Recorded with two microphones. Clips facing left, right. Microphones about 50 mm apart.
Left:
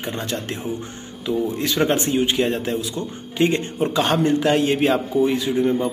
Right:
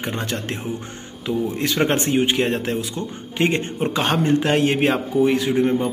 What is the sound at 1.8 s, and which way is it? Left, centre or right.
Speech, right.